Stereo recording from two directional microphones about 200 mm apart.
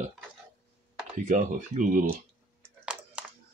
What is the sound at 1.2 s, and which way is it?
Speech, 40° right (ahead or behind).